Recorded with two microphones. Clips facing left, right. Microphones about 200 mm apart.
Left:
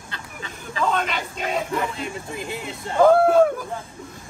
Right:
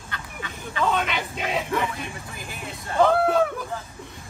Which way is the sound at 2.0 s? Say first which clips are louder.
Left 5 dB; 25° left (ahead or behind).